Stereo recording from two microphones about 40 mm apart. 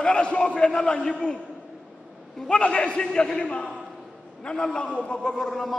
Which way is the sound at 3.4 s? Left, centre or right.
Left.